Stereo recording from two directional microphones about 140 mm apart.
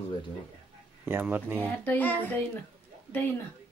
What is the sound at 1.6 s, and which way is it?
Speech, 15° left (ahead or behind).